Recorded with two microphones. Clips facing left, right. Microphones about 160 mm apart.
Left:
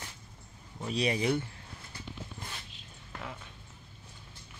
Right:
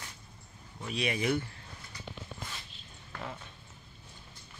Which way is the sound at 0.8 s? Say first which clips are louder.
Left 2 dB; 35° left (ahead or behind).